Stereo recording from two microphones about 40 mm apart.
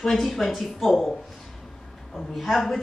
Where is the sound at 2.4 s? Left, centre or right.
Centre.